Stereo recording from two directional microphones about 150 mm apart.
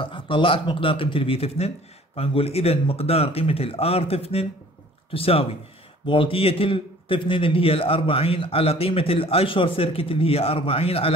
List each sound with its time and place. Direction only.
0.0 s a man's voice: 35° left (ahead or behind)